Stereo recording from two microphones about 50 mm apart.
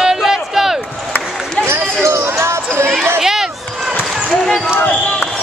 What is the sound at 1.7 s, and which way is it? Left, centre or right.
Basketball bounce, right.